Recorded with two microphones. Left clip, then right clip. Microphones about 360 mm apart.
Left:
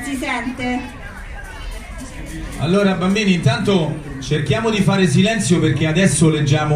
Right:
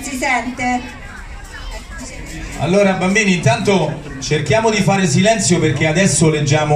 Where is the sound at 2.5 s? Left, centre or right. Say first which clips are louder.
Right 4 dB; right.